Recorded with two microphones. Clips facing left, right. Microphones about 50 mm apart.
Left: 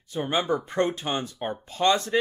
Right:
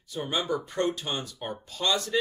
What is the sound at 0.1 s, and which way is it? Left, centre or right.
Speech, left.